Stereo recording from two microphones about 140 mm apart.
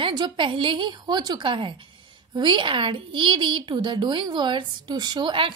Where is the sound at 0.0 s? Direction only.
35° right (ahead or behind).